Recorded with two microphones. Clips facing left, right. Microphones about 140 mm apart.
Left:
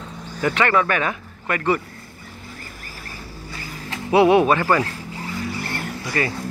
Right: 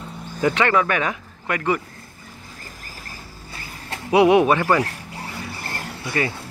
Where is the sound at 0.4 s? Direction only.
20° right (ahead or behind).